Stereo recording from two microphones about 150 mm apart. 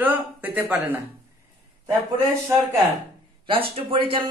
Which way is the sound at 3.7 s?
40° right (ahead or behind).